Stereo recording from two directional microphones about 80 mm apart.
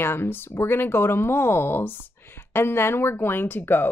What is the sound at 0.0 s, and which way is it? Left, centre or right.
Speech, left.